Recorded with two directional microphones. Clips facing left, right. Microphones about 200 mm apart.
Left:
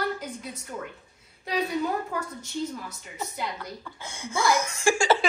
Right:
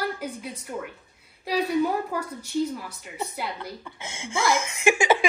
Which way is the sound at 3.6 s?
25° right (ahead or behind).